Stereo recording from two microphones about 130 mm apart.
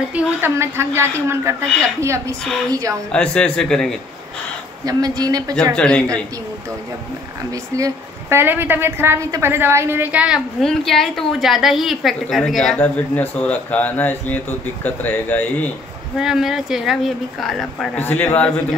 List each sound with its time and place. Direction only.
0.1 s a woman's voice: 15° right (ahead or behind)
3.1 s speech: 10° left (ahead or behind)
4.8 s a woman's voice: 30° right (ahead or behind)
5.8 s speech: 10° left (ahead or behind)
7.7 s a woman's voice: 25° right (ahead or behind)
10.6 s a woman's voice: 5° left (ahead or behind)
12.7 s speech: 10° left (ahead or behind)
16.2 s a woman's voice: 5° right (ahead or behind)
17.9 s speech: 15° left (ahead or behind)